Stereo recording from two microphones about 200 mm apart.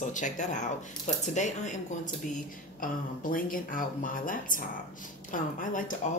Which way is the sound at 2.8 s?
45° left (ahead or behind).